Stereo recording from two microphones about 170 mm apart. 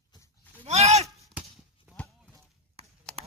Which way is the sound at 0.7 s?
40° right (ahead or behind).